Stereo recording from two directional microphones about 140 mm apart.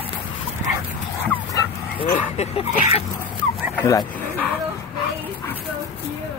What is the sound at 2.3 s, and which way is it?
Speech, 45° left (ahead or behind).